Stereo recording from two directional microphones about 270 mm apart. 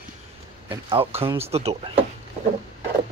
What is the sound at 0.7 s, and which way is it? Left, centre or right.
Speech, centre.